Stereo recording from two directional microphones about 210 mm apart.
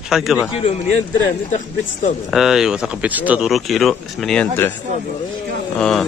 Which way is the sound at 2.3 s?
Centre (ahead or behind).